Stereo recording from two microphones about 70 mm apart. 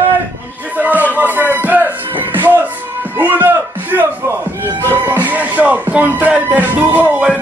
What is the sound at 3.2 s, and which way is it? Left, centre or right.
Speech, right.